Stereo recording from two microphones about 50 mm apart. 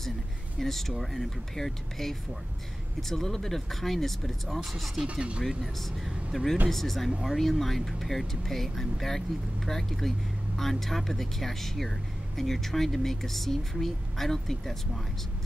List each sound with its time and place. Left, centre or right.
0.6 s speech: centre
5.1 s speech: right
5.5 s speech: centre
6.3 s speech: centre